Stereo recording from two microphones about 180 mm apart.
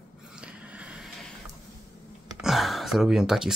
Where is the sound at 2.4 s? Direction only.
Centre (ahead or behind).